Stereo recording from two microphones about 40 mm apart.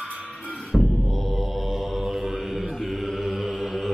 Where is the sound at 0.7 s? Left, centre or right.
Left.